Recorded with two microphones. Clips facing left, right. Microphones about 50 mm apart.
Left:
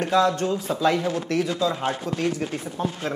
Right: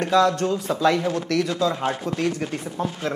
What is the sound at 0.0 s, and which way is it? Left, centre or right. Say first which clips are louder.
Speech: right 2 dB; right.